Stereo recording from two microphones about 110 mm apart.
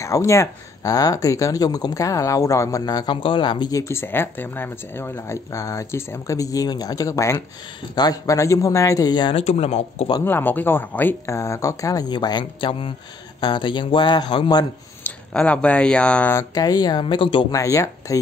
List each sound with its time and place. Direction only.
0.0 s speech: 25° left (ahead or behind)
3.2 s a man's voice: 50° left (ahead or behind)
3.7 s speech: 25° left (ahead or behind)
9.3 s speech: 70° left (ahead or behind)
10.2 s a man's voice: 15° left (ahead or behind); by 14.7 s 40° left (ahead or behind)
15.0 s speech: 10° left (ahead or behind)
16.5 s a man's voice: 35° left (ahead or behind)
17.5 s speech: 30° left (ahead or behind)